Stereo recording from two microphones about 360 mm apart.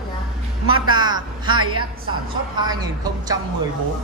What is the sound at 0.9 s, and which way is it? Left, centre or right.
Speech, centre.